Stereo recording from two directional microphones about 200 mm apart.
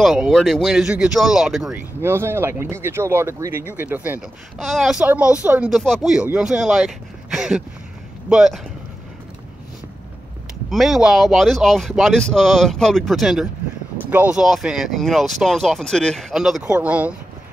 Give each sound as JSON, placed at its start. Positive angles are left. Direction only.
{"t": 0.0, "sound": "speech", "side_deg": 0}
{"t": 10.7, "sound": "speech", "side_deg": 0}